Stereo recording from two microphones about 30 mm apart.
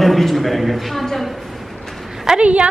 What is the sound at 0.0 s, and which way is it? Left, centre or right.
A man's voice, centre.